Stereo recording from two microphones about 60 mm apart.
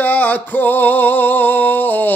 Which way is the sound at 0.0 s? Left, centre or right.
Left.